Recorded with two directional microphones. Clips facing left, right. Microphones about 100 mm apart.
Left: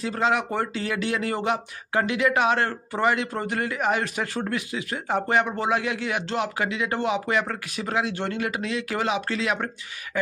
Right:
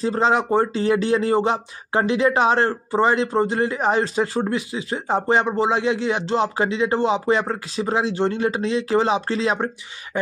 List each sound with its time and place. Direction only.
0.0 s speech: 30° right (ahead or behind)